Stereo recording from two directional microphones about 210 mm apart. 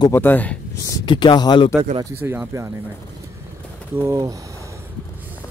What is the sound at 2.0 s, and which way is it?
Speech, 10° right (ahead or behind).